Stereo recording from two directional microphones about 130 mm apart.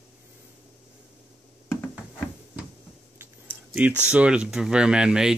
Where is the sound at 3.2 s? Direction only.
10° right (ahead or behind).